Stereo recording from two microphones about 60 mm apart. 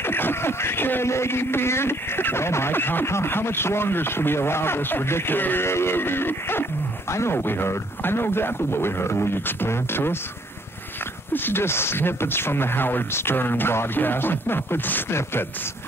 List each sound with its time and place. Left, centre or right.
0.0 s speech: left
11.3 s speech: left